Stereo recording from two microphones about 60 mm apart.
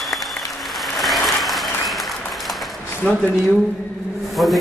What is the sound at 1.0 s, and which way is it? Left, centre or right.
Applause, centre.